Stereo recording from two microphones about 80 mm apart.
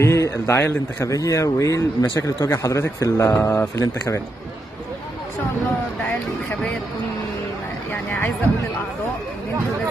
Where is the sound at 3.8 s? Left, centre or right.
Left.